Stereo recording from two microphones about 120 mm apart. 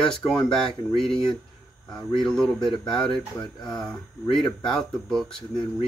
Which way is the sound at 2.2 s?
5° left (ahead or behind).